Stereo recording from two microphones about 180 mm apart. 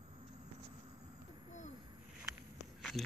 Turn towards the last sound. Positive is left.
turn(degrees=0)  # may be behind; listen again after turning